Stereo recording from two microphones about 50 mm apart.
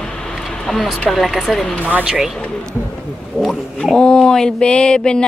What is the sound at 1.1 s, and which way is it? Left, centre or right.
Speech, centre.